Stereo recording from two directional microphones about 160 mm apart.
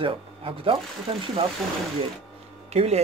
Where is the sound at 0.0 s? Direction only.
35° right (ahead or behind).